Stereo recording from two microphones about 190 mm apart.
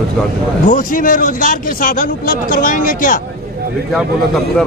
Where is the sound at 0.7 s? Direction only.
45° left (ahead or behind).